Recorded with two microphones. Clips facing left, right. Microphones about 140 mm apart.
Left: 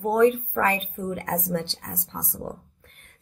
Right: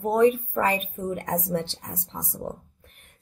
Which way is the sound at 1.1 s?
10° right (ahead or behind).